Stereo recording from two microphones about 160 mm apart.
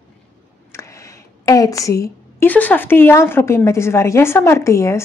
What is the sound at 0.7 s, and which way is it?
A woman's voice, 20° left (ahead or behind).